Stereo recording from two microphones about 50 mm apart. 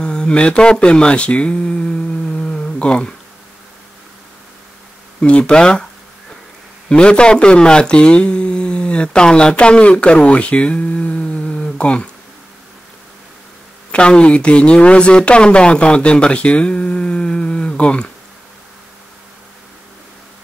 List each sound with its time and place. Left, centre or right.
0.0 s speech: centre
5.2 s speech: centre
6.9 s speech: left
13.9 s speech: left